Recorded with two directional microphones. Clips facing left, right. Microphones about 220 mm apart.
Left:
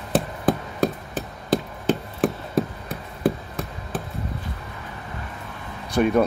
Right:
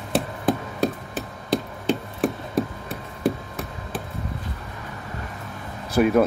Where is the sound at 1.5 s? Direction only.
Centre (ahead or behind).